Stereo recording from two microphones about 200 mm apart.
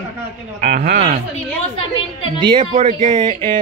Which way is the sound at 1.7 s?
25° left (ahead or behind).